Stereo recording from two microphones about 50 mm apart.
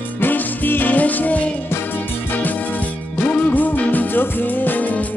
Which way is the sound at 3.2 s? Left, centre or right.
Left.